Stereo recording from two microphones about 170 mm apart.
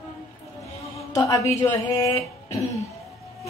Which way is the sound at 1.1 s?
20° left (ahead or behind).